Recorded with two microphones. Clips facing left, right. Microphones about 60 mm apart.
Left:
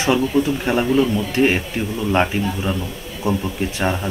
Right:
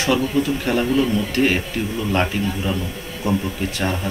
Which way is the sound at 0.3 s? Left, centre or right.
Left.